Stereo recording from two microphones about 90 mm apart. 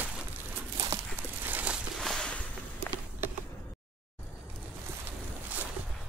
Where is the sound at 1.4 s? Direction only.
20° right (ahead or behind).